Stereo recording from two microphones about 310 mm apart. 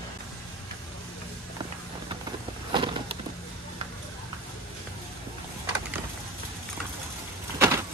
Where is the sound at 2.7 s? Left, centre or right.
Centre.